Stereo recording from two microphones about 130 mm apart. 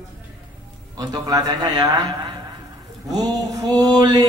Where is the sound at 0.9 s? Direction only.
30° right (ahead or behind).